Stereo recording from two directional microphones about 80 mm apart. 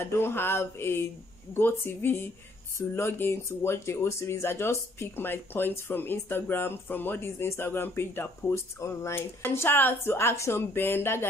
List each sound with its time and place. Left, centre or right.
0.0 s speech: left